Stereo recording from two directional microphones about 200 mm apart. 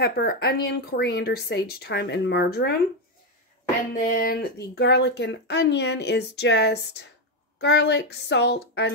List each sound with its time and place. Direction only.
0.0 s speech: 50° left (ahead or behind)
3.9 s speech: 45° left (ahead or behind)